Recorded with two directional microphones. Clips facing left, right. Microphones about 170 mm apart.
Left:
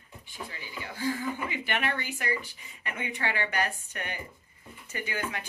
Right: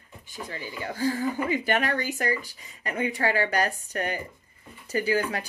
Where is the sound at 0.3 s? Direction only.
45° right (ahead or behind).